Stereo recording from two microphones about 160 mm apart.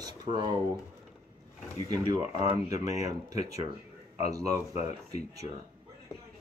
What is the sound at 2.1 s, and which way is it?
Speech, 20° right (ahead or behind).